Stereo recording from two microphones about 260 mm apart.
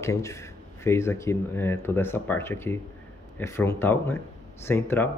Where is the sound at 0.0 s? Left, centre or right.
Centre.